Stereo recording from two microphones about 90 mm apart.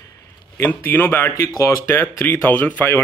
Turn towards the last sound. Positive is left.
turn(degrees=20)  # may be behind; listen again after turning